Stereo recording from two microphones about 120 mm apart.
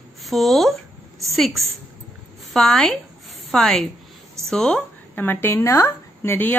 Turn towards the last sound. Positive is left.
turn(degrees=15)  # may be behind; listen again after turning